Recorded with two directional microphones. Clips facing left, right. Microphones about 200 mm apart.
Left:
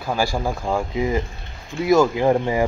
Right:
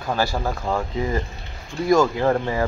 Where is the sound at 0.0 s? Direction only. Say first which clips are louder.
Left 1 dB; 10° left (ahead or behind).